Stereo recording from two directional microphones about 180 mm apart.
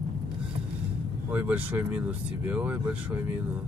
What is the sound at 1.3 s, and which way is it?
Speech, 10° right (ahead or behind).